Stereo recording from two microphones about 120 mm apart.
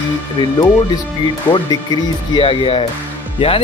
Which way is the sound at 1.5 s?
35° left (ahead or behind).